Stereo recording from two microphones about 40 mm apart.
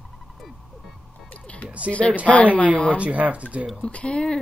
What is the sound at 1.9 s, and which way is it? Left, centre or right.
Speech, left.